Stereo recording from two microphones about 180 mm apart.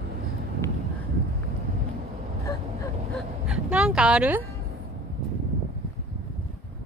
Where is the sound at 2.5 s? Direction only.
20° left (ahead or behind).